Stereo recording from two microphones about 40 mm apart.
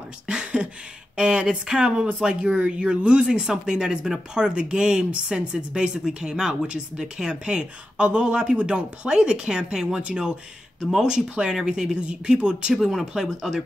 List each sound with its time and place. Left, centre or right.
0.3 s speech: right